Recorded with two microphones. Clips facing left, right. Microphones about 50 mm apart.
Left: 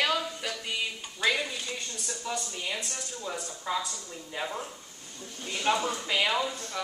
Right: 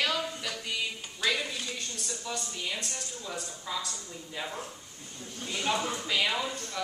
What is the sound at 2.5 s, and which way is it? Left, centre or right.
Speech, centre.